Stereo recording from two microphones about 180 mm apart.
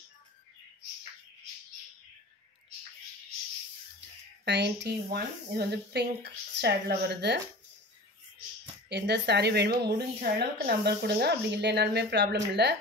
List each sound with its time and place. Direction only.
4.5 s speech: 70° right (ahead or behind)
8.8 s speech: 65° right (ahead or behind)